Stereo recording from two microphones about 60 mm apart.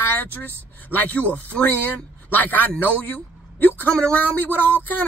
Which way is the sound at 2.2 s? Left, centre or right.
Left.